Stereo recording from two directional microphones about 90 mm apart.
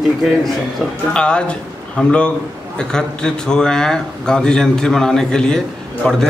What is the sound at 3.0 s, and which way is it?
A man's voice, 10° left (ahead or behind).